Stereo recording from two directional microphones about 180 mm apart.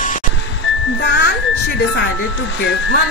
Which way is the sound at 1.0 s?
70° left (ahead or behind).